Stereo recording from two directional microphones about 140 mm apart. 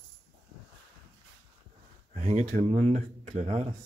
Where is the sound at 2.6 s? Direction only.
50° right (ahead or behind).